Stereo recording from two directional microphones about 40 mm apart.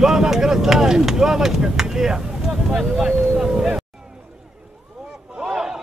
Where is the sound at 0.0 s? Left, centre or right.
Centre.